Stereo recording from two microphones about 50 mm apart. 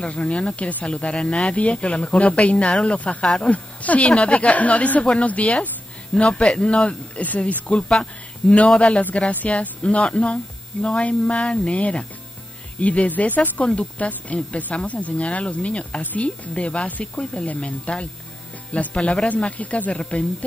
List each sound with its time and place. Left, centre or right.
0.0 s speech: left
7.9 s speech: centre